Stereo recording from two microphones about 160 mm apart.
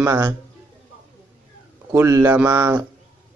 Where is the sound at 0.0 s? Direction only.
20° right (ahead or behind).